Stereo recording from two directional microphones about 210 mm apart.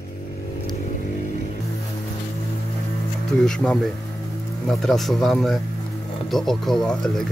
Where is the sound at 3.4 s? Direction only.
5° left (ahead or behind).